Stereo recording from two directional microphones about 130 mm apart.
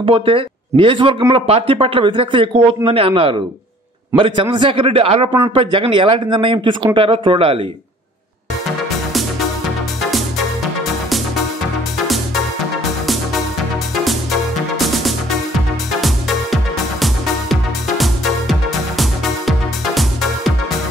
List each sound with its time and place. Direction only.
0.0 s speech: 45° right (ahead or behind)
17.0 s music: centre (ahead or behind)